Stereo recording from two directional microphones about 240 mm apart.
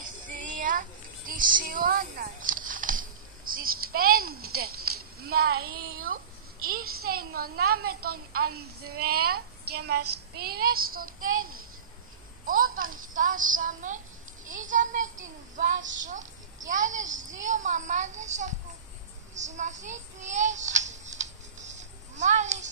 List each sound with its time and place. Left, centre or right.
0.0 s a sound: right
4.6 s speech: right
6.8 s a woman's voice: right
7.2 s a child's voice: right
7.8 s a woman's voice: right
8.1 s a child's voice: right
12.4 s a child's voice: right
19.3 s child singing: right